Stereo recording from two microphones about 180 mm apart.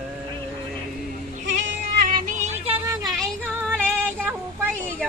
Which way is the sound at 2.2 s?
40° right (ahead or behind).